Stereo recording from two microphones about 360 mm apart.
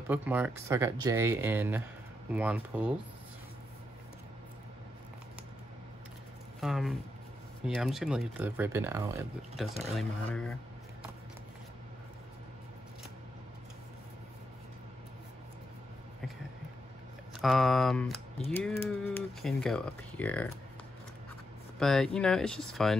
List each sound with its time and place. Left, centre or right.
0.1 s speech: centre
6.6 s speech: centre
9.9 s speech: centre
17.4 s speech: centre
21.7 s speech: centre